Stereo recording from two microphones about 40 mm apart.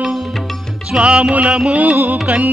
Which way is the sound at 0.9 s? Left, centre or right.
Right.